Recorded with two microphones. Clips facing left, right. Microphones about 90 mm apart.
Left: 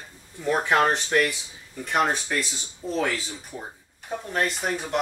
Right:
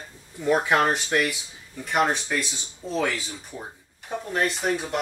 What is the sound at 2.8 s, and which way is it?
Speech, 15° left (ahead or behind).